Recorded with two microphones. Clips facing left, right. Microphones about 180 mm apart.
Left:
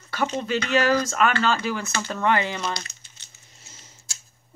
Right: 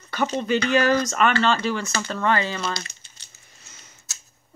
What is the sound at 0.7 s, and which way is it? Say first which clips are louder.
Speech: even; centre (ahead or behind).